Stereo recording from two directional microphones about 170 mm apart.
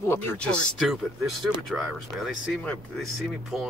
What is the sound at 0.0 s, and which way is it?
Speech, 15° left (ahead or behind).